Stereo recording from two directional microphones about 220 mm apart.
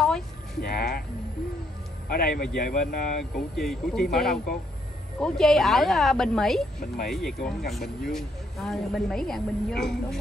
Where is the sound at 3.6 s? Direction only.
Centre (ahead or behind).